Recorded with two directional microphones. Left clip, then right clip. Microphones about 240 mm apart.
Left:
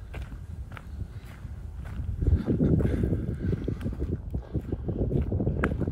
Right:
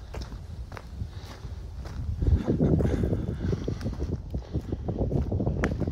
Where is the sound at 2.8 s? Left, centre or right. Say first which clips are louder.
Right 1 dB; centre.